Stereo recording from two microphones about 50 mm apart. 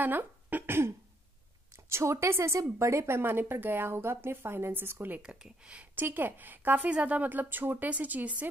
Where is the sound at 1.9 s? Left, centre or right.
Right.